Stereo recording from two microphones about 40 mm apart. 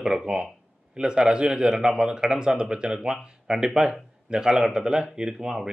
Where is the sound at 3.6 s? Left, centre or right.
Centre.